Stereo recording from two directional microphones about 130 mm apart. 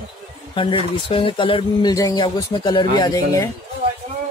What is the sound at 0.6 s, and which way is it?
Speech, 40° left (ahead or behind).